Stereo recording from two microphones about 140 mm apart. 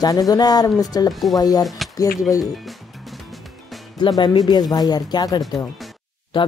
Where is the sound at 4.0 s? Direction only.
30° left (ahead or behind).